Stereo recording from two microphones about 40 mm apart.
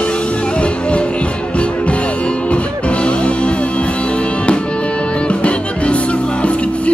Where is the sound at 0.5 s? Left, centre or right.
Left.